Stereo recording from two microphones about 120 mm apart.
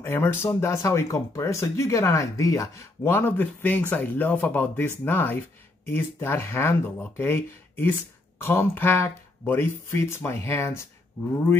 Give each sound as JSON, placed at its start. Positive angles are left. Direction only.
{"t": 0.0, "sound": "speech", "side_deg": 15}